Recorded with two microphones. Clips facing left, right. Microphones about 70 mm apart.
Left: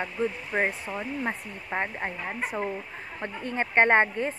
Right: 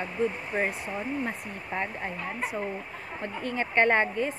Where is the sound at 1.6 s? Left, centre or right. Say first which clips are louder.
Left 2 dB; left.